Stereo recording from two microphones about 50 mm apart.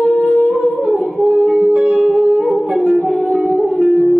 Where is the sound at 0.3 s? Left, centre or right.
Centre.